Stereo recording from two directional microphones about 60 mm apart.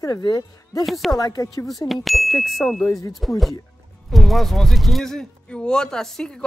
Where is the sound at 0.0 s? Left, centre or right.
Left.